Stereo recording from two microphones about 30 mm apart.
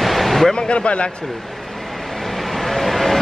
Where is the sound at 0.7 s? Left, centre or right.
Left.